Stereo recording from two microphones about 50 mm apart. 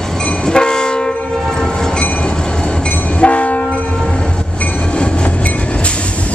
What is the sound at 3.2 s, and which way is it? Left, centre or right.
Train horn, left.